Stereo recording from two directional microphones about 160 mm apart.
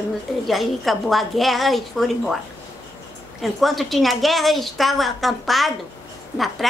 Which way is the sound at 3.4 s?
Centre (ahead or behind).